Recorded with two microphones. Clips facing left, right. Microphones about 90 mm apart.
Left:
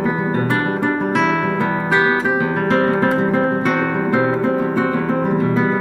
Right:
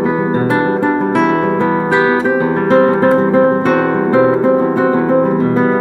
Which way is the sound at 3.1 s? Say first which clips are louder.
Right 7 dB; 25° right (ahead or behind).